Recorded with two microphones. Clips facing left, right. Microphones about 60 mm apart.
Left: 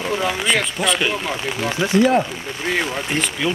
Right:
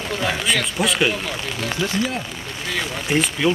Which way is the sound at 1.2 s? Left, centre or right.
Left.